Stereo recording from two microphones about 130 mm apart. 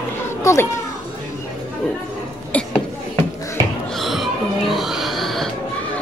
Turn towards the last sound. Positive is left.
turn(degrees=0)  # may be behind; listen again after turning